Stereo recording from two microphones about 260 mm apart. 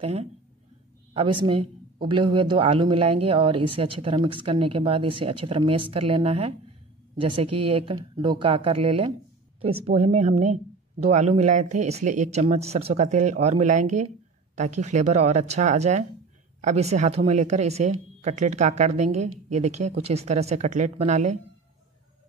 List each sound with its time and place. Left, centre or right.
0.0 s a woman's voice: right